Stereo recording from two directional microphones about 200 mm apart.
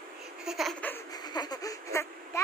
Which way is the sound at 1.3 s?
20° left (ahead or behind).